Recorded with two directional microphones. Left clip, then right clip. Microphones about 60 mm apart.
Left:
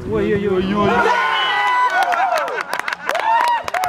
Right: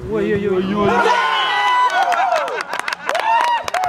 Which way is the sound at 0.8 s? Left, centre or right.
Right.